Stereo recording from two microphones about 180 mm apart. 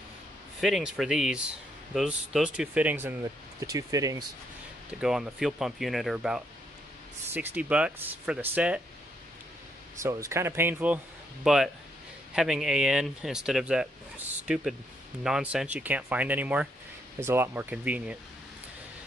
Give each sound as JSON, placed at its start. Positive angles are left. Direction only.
{"t": 0.6, "sound": "speech", "side_deg": 0}
{"t": 5.0, "sound": "speech", "side_deg": 0}
{"t": 10.0, "sound": "speech", "side_deg": -15}